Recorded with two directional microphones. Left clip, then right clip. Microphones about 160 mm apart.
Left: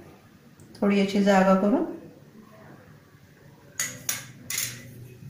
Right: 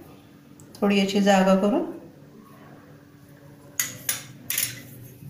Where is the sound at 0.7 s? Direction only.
20° right (ahead or behind).